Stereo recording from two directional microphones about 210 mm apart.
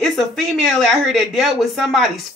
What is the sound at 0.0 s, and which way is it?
Speech, centre (ahead or behind).